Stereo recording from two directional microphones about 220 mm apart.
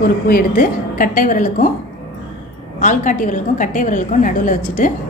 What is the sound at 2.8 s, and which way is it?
A woman's voice, 35° left (ahead or behind).